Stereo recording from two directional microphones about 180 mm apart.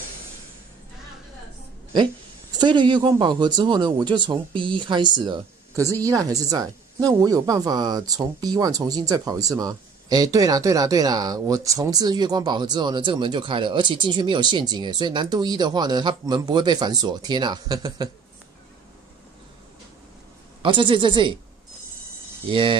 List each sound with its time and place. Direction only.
2.6 s speech: 25° right (ahead or behind)
20.6 s speech: 30° right (ahead or behind)
22.5 s speech: 30° right (ahead or behind)